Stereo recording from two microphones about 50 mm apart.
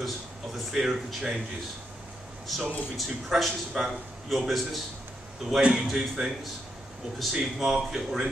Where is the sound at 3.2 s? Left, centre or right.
Centre.